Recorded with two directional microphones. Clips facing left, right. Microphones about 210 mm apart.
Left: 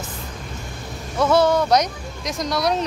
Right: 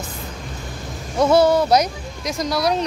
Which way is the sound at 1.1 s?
15° right (ahead or behind).